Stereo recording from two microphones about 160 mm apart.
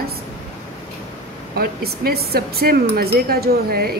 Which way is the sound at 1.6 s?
75° right (ahead or behind).